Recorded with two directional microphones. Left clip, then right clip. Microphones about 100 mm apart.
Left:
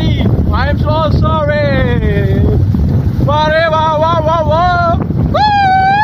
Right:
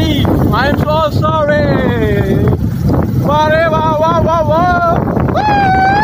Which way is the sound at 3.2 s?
10° left (ahead or behind).